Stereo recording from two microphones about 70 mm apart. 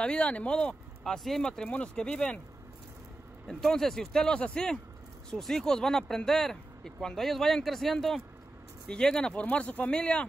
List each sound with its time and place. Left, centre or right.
0.0 s speech: centre
3.4 s speech: centre